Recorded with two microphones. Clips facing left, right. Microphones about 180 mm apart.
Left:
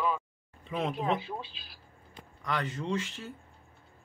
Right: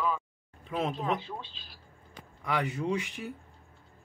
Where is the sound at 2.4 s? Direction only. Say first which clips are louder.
Right 2 dB; 10° right (ahead or behind).